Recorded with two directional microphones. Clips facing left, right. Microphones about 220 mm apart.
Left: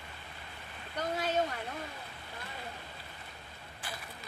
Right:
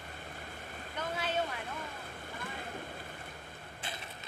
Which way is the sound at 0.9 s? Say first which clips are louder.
Left 4 dB; 40° left (ahead or behind).